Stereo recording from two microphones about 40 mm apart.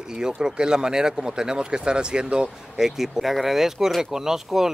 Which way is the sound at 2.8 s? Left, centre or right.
Centre.